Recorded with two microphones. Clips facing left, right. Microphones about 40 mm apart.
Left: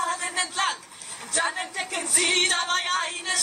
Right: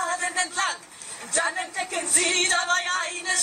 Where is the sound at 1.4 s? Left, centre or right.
Centre.